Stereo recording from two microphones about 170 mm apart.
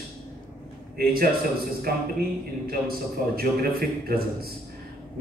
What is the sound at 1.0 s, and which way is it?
Speech, 60° right (ahead or behind).